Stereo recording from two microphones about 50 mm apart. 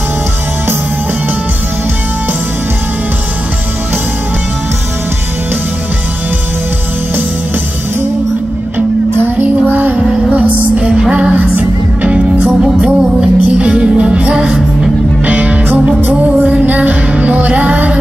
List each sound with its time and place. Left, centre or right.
9.4 s music: right
10.8 s music: centre
11.3 s music: right
12.1 s music: right
15.2 s music: right